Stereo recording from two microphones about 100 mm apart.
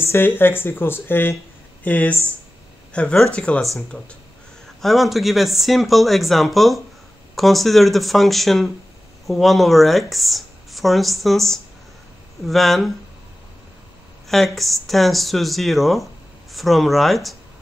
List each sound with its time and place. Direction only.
0.0 s speech: 25° left (ahead or behind); by 12.9 s centre (ahead or behind)
14.3 s speech: centre (ahead or behind)